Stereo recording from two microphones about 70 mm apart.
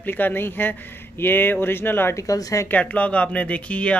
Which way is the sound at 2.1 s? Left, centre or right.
Left.